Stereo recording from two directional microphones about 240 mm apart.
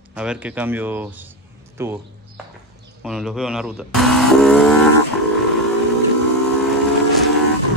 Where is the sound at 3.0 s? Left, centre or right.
Centre.